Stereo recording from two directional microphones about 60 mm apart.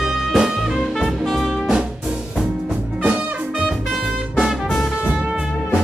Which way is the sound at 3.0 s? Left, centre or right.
Right.